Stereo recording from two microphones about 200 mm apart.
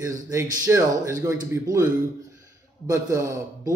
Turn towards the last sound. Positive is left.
turn(degrees=-15)  # may be behind; listen again after turning